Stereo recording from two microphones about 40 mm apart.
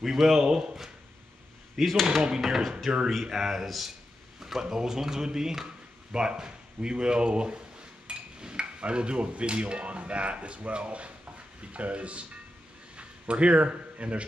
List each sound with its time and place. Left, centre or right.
0.0 s speech: centre
1.8 s a man's voice: centre; by 7.6 s right
8.1 s dishes: right
12.9 s speech: right